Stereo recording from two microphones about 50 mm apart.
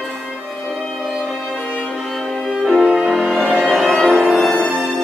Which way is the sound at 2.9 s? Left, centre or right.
Centre.